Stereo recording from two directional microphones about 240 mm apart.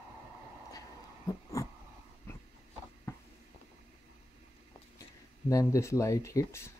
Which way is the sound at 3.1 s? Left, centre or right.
Centre.